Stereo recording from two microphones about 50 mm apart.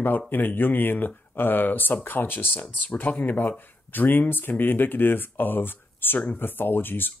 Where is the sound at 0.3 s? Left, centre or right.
Left.